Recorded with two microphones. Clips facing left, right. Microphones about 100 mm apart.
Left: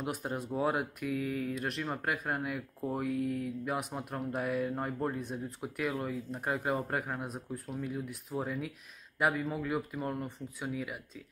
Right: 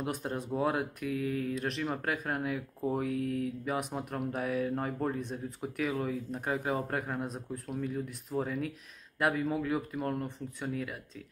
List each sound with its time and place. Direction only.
0.0 s speech: 5° left (ahead or behind)